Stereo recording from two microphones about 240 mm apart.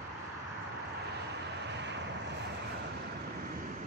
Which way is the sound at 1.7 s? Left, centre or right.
Right.